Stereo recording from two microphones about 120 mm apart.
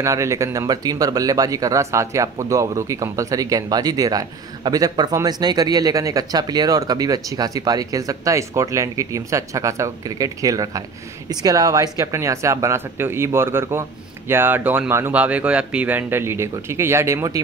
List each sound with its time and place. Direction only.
0.0 s speech: 25° right (ahead or behind)